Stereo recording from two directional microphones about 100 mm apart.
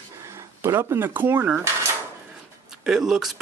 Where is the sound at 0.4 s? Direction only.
30° right (ahead or behind).